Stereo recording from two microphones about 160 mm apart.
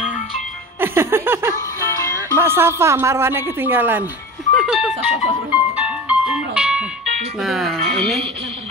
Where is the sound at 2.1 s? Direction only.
15° right (ahead or behind).